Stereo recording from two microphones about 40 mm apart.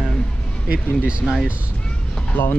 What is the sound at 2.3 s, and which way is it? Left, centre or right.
Speech, left.